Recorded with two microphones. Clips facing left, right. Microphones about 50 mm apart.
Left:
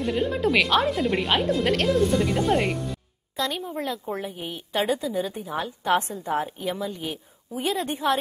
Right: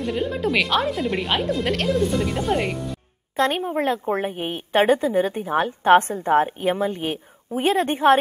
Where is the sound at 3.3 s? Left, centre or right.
Right.